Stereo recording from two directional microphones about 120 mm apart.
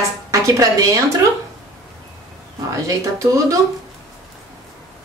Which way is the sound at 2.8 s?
25° right (ahead or behind).